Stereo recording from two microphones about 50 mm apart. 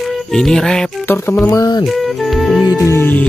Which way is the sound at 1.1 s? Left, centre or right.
Left.